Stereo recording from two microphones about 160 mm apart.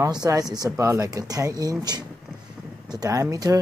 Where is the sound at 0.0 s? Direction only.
20° right (ahead or behind).